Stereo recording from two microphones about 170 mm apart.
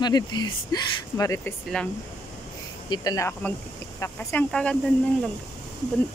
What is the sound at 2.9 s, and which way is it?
Speech, 20° left (ahead or behind).